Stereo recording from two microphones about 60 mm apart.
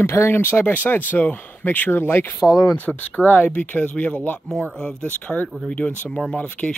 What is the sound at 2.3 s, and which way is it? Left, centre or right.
Speech, left.